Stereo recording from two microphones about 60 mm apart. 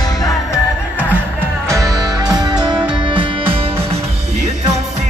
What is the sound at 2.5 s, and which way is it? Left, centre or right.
Music, centre.